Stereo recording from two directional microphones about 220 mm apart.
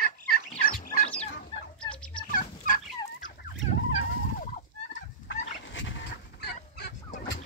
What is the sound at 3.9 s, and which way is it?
Fowl, 35° left (ahead or behind).